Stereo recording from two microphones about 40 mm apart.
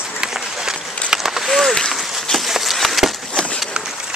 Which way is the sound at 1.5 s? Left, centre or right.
Centre.